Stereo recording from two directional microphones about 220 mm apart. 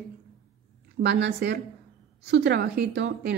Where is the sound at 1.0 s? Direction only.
50° right (ahead or behind).